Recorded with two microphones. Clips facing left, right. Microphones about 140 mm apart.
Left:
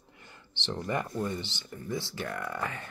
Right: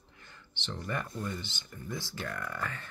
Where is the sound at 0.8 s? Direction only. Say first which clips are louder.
Left 5 dB; 20° left (ahead or behind).